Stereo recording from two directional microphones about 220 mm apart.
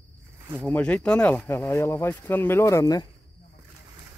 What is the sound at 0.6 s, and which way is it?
Speech, 5° left (ahead or behind).